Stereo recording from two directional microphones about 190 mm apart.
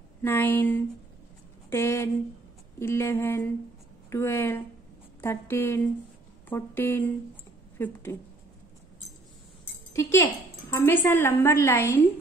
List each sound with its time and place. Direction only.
0.2 s a woman's voice: 10° left (ahead or behind)
9.9 s a woman's voice: 15° left (ahead or behind)